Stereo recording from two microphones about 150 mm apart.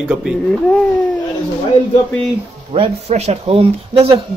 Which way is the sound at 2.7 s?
45° right (ahead or behind).